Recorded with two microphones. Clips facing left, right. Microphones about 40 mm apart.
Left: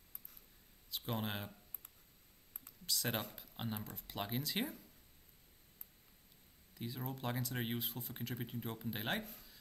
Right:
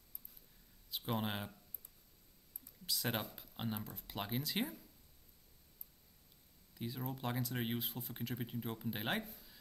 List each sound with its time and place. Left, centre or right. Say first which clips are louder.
0.8 s speech: right 2 dB; centre
2.9 s speech: even; centre
6.7 s speech: right 1 dB; centre
9.2 s speech: even; left